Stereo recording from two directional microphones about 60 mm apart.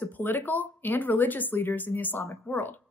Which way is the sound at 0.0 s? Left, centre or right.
Left.